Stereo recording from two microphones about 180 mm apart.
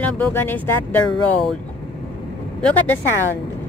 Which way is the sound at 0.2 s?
10° left (ahead or behind).